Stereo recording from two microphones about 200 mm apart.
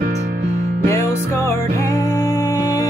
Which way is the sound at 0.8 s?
15° left (ahead or behind).